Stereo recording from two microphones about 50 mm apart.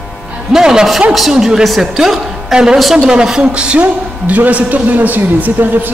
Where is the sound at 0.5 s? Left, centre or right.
Centre.